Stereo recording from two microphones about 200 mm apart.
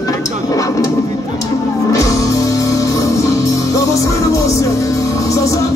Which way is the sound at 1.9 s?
15° left (ahead or behind).